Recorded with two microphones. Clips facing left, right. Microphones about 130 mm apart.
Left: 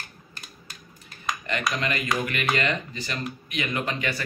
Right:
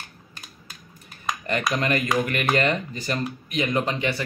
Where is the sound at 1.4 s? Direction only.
45° right (ahead or behind); by 4.1 s 30° right (ahead or behind).